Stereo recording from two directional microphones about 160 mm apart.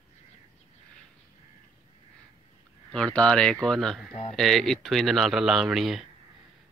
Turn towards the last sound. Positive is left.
turn(degrees=0)  # may be behind; listen again after turning